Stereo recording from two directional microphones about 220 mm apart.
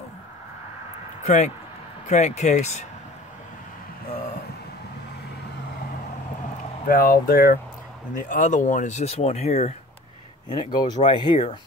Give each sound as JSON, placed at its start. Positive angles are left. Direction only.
{"t": 1.2, "sound": "speech", "side_deg": 30}
{"t": 6.9, "sound": "speech", "side_deg": 40}